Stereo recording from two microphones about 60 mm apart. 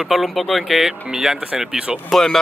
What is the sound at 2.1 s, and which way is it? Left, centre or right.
Speech, centre.